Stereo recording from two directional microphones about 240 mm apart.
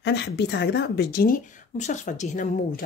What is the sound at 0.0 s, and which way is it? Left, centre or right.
Speech, left.